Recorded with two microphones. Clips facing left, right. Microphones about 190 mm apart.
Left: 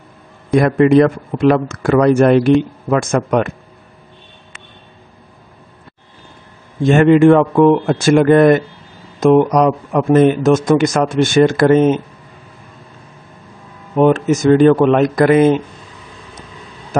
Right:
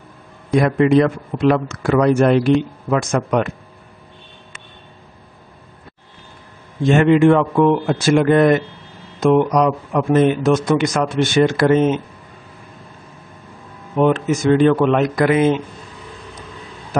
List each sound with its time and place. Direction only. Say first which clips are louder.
0.6 s a man's voice: left 3 dB; 55° left (ahead or behind)
6.9 s a man's voice: left 3 dB; 50° left (ahead or behind)
13.9 s a man's voice: left 4 dB; 45° left (ahead or behind)